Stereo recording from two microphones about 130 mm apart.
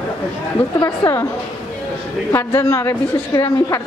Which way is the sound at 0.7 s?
20° left (ahead or behind).